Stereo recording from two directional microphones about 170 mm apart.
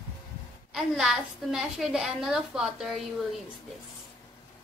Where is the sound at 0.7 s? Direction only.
Centre (ahead or behind).